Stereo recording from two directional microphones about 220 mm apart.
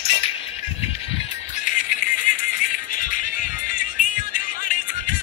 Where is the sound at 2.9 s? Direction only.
40° left (ahead or behind).